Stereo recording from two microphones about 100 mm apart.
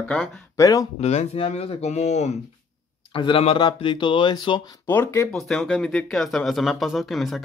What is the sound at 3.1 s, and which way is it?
Speech, 65° left (ahead or behind).